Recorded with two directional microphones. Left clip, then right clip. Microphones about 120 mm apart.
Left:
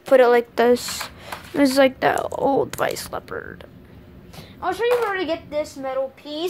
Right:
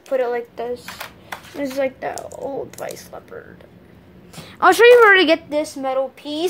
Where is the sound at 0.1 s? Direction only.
55° left (ahead or behind).